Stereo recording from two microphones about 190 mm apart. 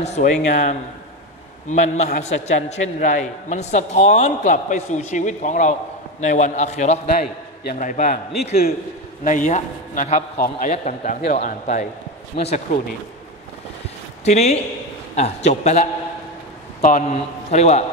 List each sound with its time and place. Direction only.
0.0 s a man's voice: 35° left (ahead or behind)
14.2 s a man's voice: 35° left (ahead or behind)